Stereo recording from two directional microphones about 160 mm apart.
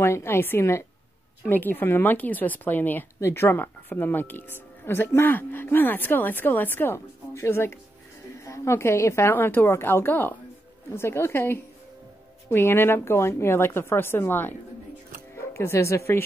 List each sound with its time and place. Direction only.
0.0 s speech: 15° left (ahead or behind)